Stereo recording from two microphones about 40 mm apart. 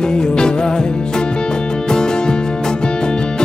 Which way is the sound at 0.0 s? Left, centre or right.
Centre.